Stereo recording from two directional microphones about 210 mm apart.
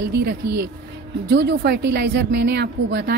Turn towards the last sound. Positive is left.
turn(degrees=-50)  # may be behind; listen again after turning